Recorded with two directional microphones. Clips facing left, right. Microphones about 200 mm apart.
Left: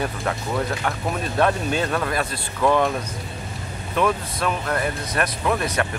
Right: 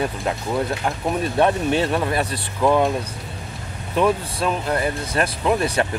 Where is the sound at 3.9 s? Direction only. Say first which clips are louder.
Right 3 dB; 30° right (ahead or behind).